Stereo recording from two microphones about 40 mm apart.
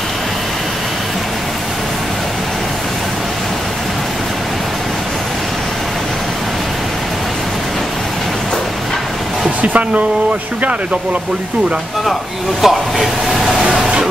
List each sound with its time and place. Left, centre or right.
9.6 s speech: right
12.6 s speech: centre